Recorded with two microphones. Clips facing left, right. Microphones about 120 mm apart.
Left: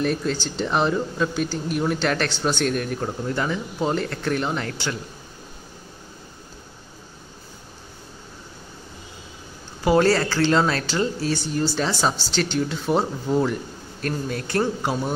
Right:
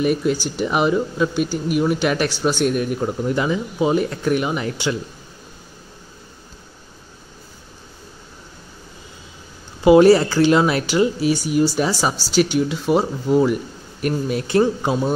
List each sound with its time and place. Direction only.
0.0 s speech: 10° right (ahead or behind)
9.8 s speech: 15° right (ahead or behind)
14.0 s speech: 20° right (ahead or behind)